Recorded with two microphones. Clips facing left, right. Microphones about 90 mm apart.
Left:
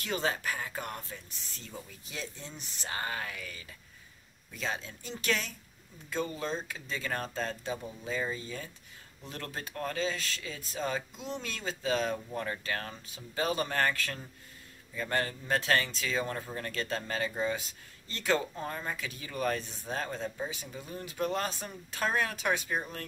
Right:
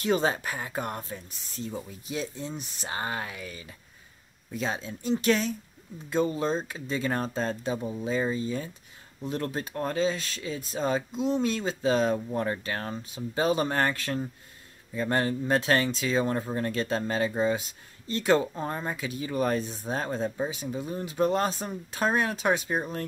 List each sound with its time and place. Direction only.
0.0 s speech: 25° right (ahead or behind)
18.9 s speech: 20° right (ahead or behind)